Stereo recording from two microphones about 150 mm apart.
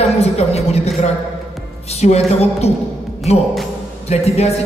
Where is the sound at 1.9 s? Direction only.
45° left (ahead or behind).